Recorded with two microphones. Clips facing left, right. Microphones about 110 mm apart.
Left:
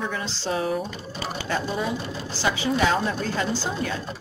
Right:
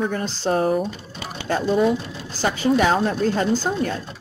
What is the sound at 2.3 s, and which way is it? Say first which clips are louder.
Speech: right 5 dB; 50° right (ahead or behind).